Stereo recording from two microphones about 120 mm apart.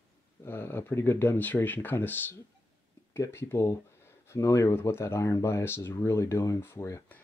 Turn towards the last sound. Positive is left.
turn(degrees=25)  # may be behind; listen again after turning